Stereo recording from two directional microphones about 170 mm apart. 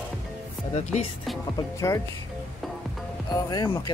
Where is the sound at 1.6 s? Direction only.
20° left (ahead or behind).